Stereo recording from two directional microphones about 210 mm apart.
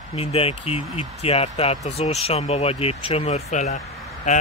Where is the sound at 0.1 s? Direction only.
30° left (ahead or behind).